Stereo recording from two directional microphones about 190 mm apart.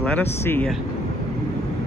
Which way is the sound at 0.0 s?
10° left (ahead or behind).